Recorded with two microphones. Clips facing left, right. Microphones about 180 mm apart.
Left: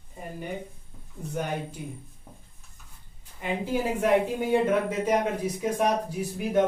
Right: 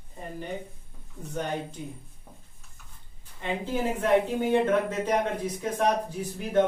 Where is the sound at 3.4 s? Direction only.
10° left (ahead or behind).